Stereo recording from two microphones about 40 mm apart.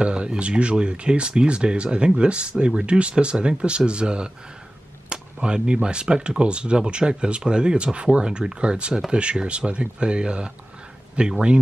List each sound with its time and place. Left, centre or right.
0.0 s speech: right